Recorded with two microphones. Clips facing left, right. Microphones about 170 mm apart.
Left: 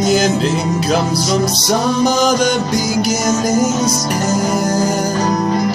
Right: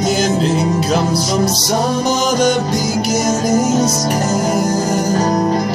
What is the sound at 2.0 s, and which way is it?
Speech, 5° right (ahead or behind).